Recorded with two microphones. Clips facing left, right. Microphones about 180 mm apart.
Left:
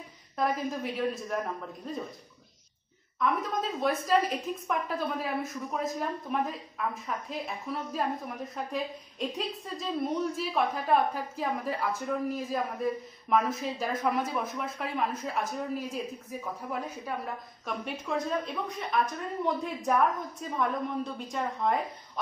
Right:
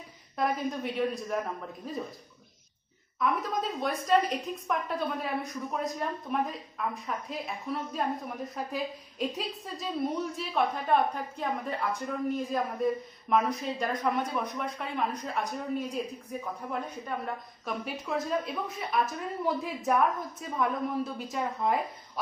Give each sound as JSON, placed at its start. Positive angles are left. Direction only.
{"t": 0.4, "sound": "a woman's voice", "side_deg": 0}
{"t": 3.2, "sound": "a woman's voice", "side_deg": 0}